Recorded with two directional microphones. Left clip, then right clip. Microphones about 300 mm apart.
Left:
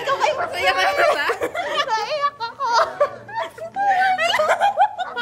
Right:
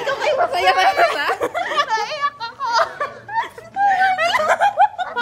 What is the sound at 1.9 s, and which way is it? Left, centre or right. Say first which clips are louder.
Laughter: right 1 dB; centre.